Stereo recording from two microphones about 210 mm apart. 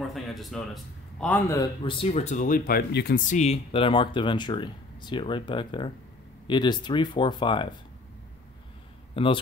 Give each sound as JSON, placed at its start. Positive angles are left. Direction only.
{"t": 0.1, "sound": "a man's voice", "side_deg": 0}
{"t": 9.1, "sound": "speech", "side_deg": 25}